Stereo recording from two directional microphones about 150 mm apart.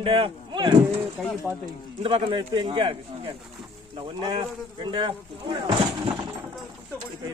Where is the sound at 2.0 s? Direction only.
35° right (ahead or behind).